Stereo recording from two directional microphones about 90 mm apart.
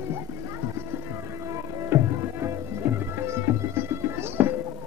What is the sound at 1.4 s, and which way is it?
Music, 30° right (ahead or behind).